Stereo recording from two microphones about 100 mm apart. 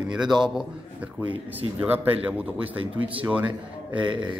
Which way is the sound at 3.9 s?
50° right (ahead or behind).